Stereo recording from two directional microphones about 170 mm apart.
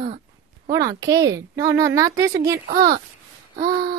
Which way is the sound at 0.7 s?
20° right (ahead or behind).